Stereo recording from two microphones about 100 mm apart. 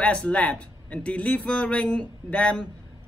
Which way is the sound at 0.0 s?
10° left (ahead or behind).